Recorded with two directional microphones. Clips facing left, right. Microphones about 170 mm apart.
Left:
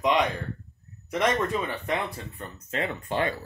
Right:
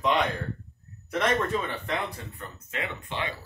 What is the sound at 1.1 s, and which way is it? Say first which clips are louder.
Speech: left 1 dB; 10° left (ahead or behind).